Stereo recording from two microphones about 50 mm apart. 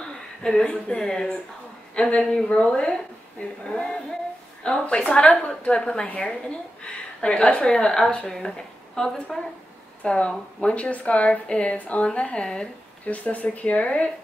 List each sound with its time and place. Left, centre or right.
0.0 s a woman's voice: centre
13.0 s a woman's voice: left